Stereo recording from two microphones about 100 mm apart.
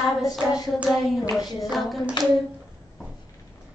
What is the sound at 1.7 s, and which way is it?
Hands, centre (ahead or behind).